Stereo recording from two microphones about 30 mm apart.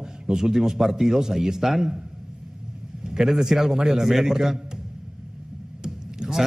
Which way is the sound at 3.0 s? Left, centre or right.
Right.